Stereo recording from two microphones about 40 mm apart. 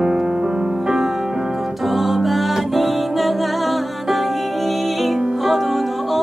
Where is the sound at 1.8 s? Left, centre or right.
Centre.